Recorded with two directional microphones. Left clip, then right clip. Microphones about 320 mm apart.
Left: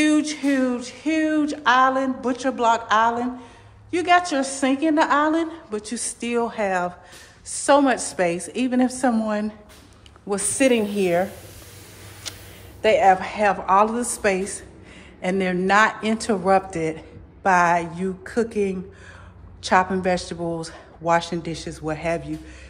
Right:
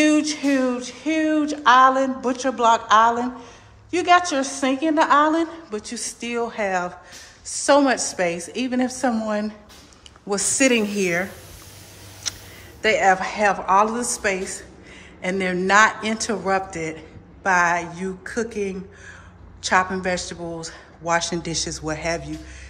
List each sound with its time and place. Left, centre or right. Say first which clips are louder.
0.0 s a man's voice: right 1 dB; centre
12.2 s a sound: right 5 dB; centre
12.8 s a man's voice: left 1 dB; centre